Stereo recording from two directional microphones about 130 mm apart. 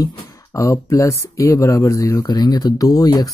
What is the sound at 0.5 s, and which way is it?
Speech, 25° left (ahead or behind).